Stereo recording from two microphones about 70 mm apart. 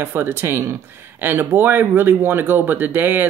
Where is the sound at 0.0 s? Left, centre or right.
Right.